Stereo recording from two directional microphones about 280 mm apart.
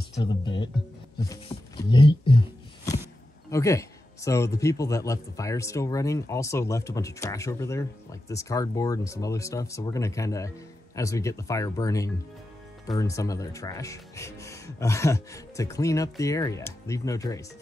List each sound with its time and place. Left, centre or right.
0.2 s speech: centre